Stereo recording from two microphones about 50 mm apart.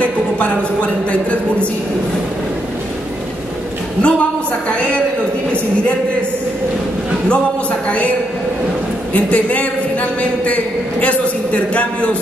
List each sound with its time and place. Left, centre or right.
0.0 s speech: left
4.0 s a sound: left
9.1 s a man's voice: left